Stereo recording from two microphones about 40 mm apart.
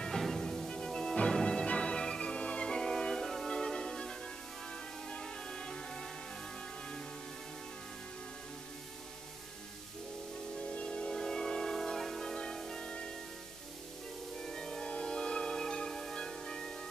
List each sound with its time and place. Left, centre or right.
0.7 s music: centre
10.6 s a sound: left
11.1 s music: centre
12.8 s music: left
14.4 s music: centre